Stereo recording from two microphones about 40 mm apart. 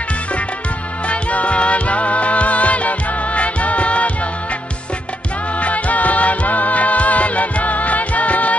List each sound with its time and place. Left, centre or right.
1.0 s music: left
5.6 s music: left